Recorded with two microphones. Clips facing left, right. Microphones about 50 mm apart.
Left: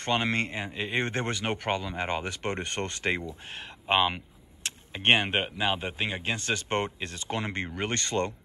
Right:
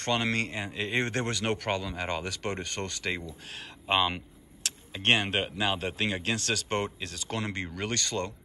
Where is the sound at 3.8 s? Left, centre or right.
Centre.